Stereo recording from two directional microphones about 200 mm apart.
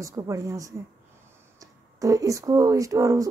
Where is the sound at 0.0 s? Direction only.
15° right (ahead or behind).